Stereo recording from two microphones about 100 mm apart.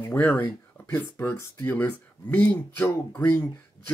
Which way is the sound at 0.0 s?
20° left (ahead or behind).